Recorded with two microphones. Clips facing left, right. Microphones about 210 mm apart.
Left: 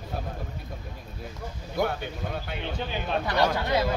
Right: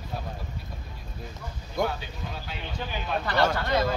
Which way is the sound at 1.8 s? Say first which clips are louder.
Left 2 dB; 55° left (ahead or behind).